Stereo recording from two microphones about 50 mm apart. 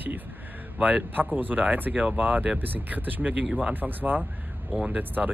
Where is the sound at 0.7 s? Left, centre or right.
Right.